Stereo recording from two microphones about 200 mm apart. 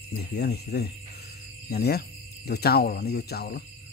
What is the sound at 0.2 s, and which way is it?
Speech, 55° left (ahead or behind).